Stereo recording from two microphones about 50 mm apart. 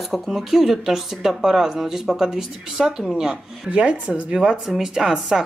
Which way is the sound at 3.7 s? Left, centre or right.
Right.